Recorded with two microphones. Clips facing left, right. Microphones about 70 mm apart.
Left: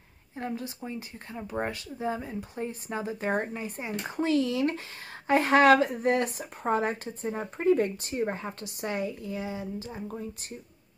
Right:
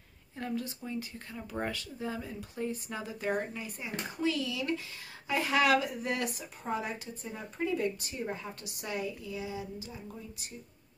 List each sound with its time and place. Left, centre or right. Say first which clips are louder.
0.4 s speech: left 2 dB; left
6.6 s speech: left 8 dB; left